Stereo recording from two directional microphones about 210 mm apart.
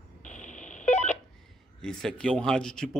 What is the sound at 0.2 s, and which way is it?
Telephone dialing, 35° left (ahead or behind).